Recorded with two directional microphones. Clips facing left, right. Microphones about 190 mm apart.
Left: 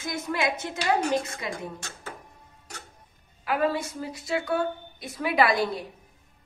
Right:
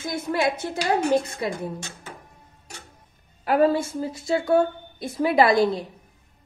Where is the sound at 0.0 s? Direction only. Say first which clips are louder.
Right 4 dB; 30° right (ahead or behind).